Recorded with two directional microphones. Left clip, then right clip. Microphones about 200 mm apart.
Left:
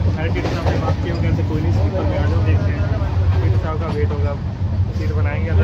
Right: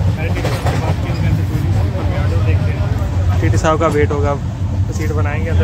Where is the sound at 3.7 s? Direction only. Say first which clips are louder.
Right 13 dB; 30° right (ahead or behind).